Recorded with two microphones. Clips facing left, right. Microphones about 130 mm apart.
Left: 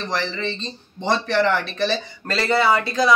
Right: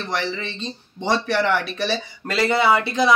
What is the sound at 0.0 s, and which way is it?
Speech, 5° right (ahead or behind).